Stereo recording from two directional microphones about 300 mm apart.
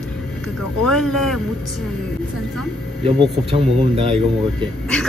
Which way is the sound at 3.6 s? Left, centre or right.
Centre.